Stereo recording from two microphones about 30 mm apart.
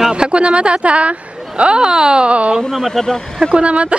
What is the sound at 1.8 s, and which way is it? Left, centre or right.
Speech, right.